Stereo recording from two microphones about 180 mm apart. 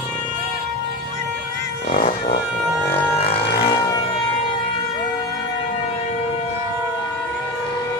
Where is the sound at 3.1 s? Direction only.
35° left (ahead or behind).